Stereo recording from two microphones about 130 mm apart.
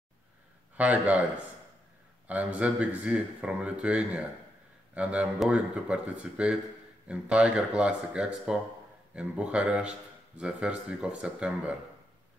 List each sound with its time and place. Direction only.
0.7 s speech: 10° right (ahead or behind)